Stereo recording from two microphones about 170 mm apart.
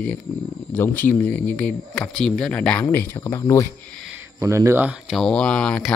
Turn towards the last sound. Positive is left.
turn(degrees=5)  # may be behind; listen again after turning